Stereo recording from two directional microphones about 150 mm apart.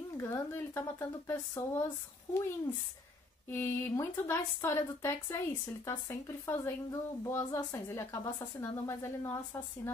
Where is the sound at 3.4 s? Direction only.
15° left (ahead or behind).